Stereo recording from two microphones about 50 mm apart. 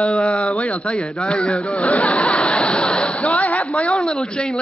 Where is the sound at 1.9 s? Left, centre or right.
Left.